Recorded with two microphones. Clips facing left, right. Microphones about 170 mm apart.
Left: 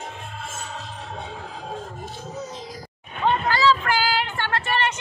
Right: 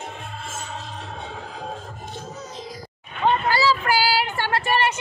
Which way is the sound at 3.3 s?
10° right (ahead or behind).